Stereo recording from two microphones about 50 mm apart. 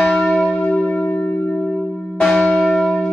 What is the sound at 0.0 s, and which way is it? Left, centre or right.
Church bell, centre.